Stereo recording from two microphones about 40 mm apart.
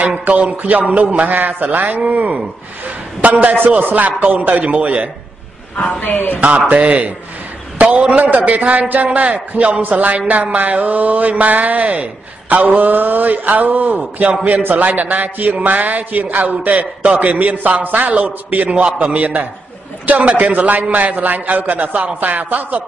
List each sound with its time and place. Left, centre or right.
0.3 s a man's voice: right
1.3 s a man's voice: right
5.8 s speech: left
6.4 s a man's voice: right